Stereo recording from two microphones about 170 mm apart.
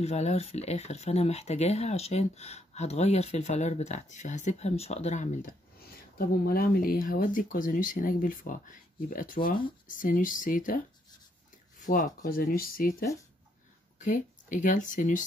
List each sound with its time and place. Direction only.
0.0 s speech: 40° left (ahead or behind)
6.1 s speech: 60° left (ahead or behind)
11.8 s speech: 50° left (ahead or behind)
13.9 s speech: 50° left (ahead or behind)